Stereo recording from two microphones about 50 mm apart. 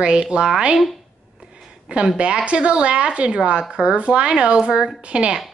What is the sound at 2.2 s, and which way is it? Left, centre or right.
A woman's voice, right.